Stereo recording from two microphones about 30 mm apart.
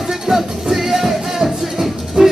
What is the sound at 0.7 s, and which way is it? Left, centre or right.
Music, centre.